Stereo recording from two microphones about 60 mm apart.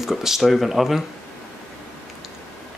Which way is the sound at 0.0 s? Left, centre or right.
Centre.